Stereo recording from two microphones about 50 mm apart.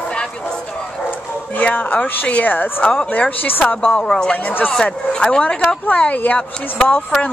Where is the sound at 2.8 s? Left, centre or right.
Centre.